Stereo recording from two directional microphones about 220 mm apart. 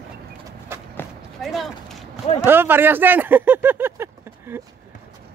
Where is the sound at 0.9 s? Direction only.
Centre (ahead or behind).